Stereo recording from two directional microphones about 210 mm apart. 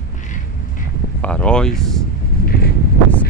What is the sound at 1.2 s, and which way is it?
Speech, 5° left (ahead or behind).